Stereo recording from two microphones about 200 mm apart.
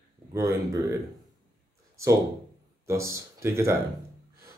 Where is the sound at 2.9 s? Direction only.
15° right (ahead or behind).